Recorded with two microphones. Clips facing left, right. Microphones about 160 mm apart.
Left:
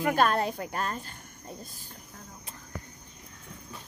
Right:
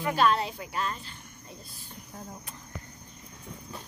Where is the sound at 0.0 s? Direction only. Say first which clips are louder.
Left 1 dB; 50° left (ahead or behind).